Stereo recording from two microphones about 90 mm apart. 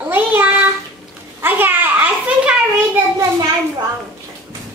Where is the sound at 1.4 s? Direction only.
20° right (ahead or behind).